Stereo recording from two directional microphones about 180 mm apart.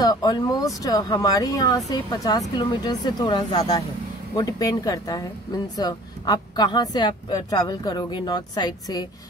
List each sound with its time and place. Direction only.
0.0 s speech: 20° left (ahead or behind)